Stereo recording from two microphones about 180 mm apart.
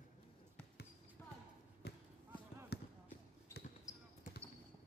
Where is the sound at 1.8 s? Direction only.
65° left (ahead or behind).